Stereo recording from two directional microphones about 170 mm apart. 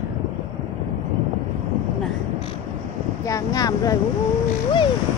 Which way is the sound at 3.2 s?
20° left (ahead or behind).